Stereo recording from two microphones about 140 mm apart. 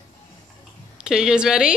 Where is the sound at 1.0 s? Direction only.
5° right (ahead or behind).